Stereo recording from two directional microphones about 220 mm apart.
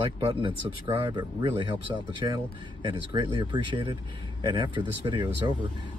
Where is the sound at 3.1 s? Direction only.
20° right (ahead or behind).